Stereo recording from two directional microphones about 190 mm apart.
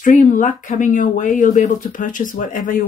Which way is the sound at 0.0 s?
45° left (ahead or behind).